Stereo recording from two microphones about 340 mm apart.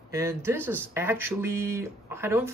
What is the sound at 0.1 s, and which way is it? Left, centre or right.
Speech, centre.